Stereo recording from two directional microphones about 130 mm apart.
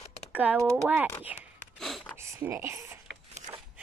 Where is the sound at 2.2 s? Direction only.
20° right (ahead or behind).